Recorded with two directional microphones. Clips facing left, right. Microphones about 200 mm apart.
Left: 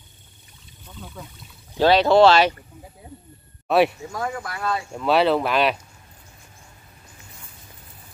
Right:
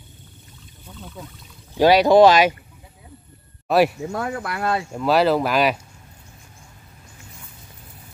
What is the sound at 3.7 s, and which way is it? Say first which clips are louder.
Speech: right 1 dB; centre (ahead or behind).